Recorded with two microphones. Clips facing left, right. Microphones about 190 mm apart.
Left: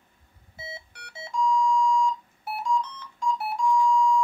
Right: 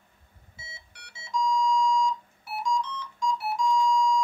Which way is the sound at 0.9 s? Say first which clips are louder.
Even; 55° left (ahead or behind).